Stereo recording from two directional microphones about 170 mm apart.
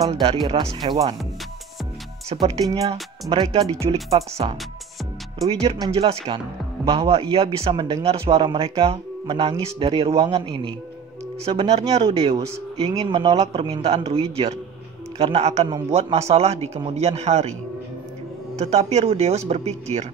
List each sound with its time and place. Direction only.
0.1 s speech: 35° right (ahead or behind)
0.8 s speech: 20° right (ahead or behind)
2.4 s speech: 20° right (ahead or behind)
5.9 s speech: 35° right (ahead or behind)
18.6 s speech: 40° right (ahead or behind)